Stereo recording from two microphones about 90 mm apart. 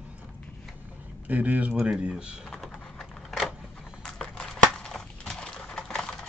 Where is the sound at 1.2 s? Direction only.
15° right (ahead or behind).